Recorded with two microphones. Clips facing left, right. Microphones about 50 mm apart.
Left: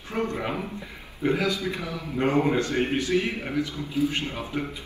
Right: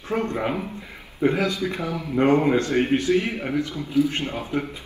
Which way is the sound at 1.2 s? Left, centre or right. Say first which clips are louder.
Right 3 dB; right.